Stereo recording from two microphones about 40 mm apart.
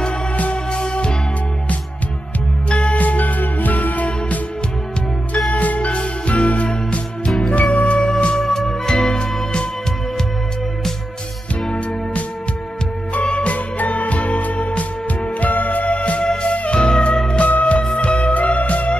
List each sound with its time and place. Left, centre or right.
0.4 s music: left
2.7 s music: left
5.5 s music: left
8.0 s music: left
13.1 s music: left
13.7 s music: left
17.4 s music: left